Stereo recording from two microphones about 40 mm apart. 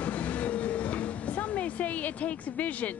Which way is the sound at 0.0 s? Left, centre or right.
Left.